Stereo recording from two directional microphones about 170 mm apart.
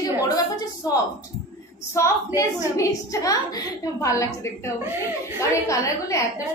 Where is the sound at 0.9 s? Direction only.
20° left (ahead or behind).